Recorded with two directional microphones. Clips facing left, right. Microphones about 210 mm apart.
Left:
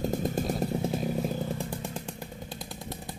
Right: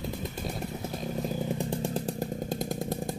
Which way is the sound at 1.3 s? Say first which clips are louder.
Right 2 dB; 15° right (ahead or behind).